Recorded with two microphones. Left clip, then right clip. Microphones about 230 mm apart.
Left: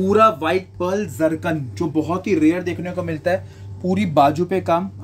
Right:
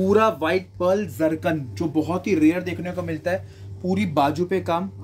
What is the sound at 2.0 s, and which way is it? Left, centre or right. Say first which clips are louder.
Speech: left 2 dB; centre.